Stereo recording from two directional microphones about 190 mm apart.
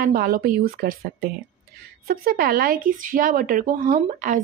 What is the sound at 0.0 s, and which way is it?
Speech, 50° right (ahead or behind).